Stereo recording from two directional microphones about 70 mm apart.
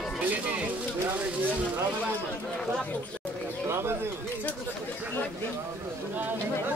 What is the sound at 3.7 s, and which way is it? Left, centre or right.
Bird, right.